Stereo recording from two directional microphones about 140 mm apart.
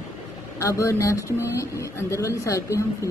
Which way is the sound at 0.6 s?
20° left (ahead or behind).